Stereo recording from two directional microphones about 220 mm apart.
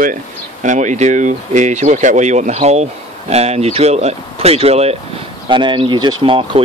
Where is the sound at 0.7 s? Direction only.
35° right (ahead or behind).